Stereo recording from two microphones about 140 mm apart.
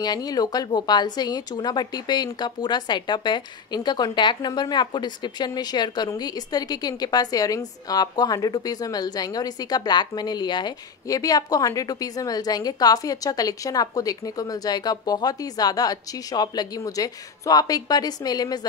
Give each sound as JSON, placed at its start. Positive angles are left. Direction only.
{"t": 0.0, "sound": "speech", "side_deg": 30}